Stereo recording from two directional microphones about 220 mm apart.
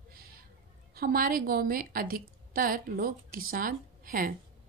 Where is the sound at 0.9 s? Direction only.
40° right (ahead or behind).